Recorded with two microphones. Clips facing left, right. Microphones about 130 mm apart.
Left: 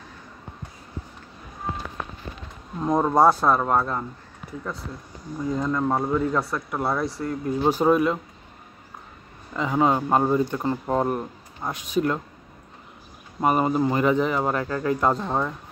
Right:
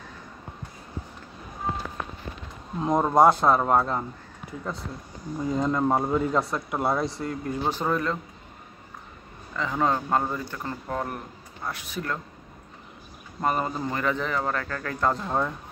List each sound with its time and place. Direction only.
2.8 s speech: 5° right (ahead or behind)
3.2 s speech: 20° right (ahead or behind)
5.6 s speech: 15° right (ahead or behind)
7.2 s speech: 5° left (ahead or behind)
9.6 s speech: 15° left (ahead or behind)
13.4 s speech: 15° left (ahead or behind)